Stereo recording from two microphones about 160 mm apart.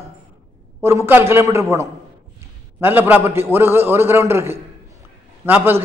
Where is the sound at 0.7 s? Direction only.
15° right (ahead or behind).